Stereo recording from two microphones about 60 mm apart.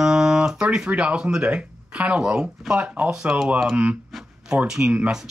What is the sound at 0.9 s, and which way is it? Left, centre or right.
Speech, centre.